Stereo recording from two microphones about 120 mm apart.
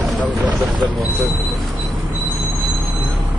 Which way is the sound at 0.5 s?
35° right (ahead or behind).